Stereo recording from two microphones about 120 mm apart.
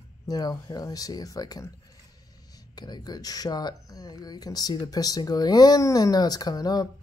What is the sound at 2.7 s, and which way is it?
Speech, 35° left (ahead or behind).